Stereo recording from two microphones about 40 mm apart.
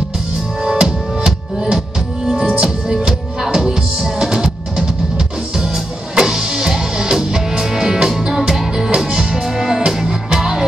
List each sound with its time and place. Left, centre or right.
0.7 s music: centre
6.1 s music: centre